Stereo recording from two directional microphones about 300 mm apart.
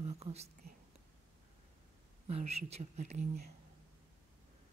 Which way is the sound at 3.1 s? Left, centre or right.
Right.